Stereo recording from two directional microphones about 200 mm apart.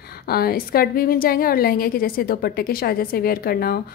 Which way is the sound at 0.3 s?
50° left (ahead or behind).